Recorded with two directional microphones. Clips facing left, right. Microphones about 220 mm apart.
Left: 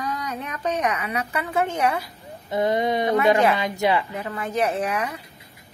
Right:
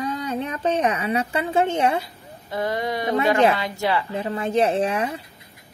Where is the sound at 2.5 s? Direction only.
20° left (ahead or behind).